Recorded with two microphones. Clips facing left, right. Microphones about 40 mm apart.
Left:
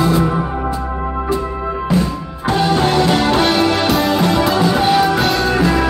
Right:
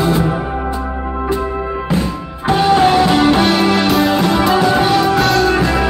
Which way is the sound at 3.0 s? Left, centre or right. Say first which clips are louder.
Right 2 dB; centre.